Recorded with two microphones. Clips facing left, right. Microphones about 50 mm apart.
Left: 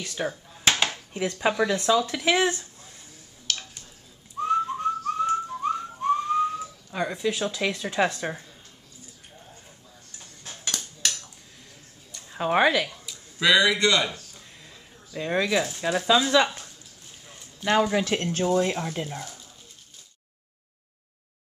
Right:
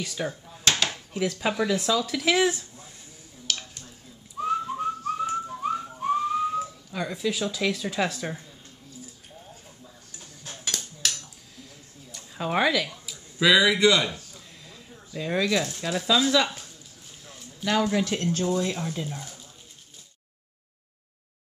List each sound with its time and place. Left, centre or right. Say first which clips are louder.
0.2 s a sound: left 2 dB; centre
1.2 s speech: left 2 dB; centre
1.5 s speech: left 2 dB; centre
2.0 s speech: even; centre
3.5 s a sound: even; centre
4.4 s whistling: left 2 dB; centre
6.9 s telephone dialing: left 8 dB; centre
7.2 s speech: right 2 dB; centre
10.6 s dishes: left 1 dB; centre
12.3 s speech: left 3 dB; centre
12.8 s speech: left 1 dB; centre
15.1 s speech: left 1 dB; centre
16.4 s a sound: left 1 dB; centre
18.0 s speech: left 1 dB; left